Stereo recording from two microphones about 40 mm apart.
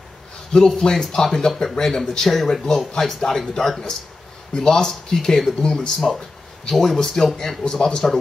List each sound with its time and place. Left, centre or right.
0.5 s speech: centre
5.9 s a sound: centre
6.7 s speech: centre